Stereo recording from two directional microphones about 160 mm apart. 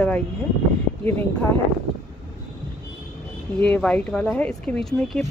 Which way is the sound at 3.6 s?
5° left (ahead or behind).